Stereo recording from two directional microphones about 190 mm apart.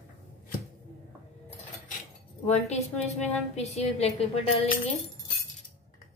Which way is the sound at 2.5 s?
35° left (ahead or behind).